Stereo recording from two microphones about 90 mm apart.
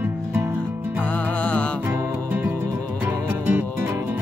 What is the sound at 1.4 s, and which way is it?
Music, 15° left (ahead or behind).